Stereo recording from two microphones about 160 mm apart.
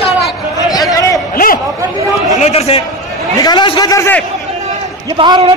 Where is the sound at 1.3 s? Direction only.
65° left (ahead or behind).